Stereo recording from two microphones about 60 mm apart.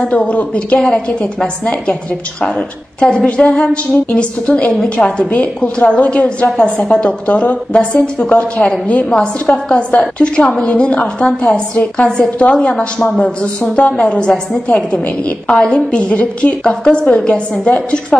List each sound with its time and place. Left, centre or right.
0.0 s a woman's voice: centre
3.0 s a woman's voice: centre